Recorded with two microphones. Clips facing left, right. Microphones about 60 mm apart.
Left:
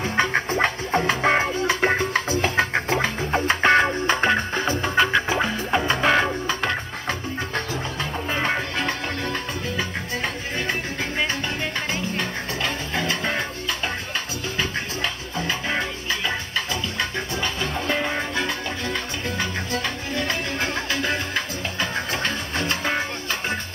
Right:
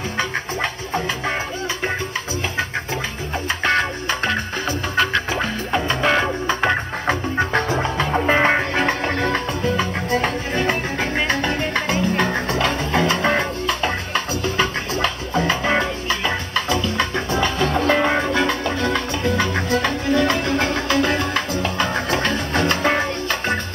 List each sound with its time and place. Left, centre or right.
0.2 s music: left
3.6 s music: centre
6.4 s music: right
7.3 s music: right
9.2 s music: right
11.2 s music: right